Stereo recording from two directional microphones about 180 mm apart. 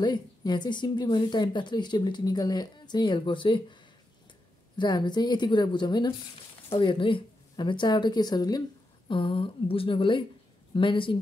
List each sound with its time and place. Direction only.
0.0 s speech: 25° left (ahead or behind)
4.7 s speech: 25° left (ahead or behind)